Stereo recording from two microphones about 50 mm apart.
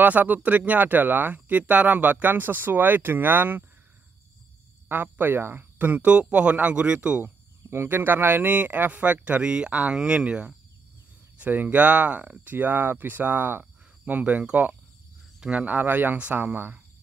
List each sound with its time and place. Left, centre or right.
0.0 s speech: right
4.8 s a sound: right
5.1 s speech: right
5.9 s speech: right
7.2 s speech: right
11.3 s speech: right